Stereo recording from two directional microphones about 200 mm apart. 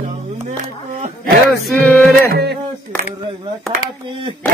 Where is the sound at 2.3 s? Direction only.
55° right (ahead or behind).